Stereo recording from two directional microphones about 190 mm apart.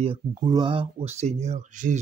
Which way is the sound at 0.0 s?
25° right (ahead or behind).